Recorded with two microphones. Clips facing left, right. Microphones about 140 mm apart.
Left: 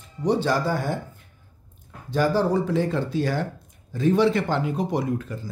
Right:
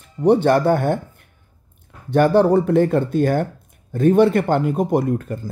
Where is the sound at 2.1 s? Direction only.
60° right (ahead or behind).